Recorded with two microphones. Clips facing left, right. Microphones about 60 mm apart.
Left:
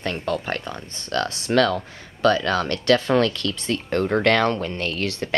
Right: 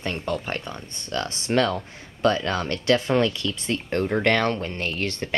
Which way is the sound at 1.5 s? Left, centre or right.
Centre.